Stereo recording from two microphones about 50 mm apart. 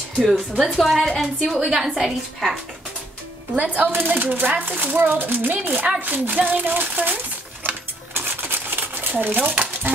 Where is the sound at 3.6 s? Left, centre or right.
Right.